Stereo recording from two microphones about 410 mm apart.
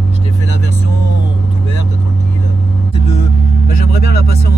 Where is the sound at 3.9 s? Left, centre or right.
Left.